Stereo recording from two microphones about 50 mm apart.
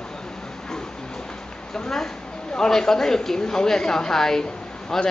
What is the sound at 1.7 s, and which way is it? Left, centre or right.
A woman's voice, centre.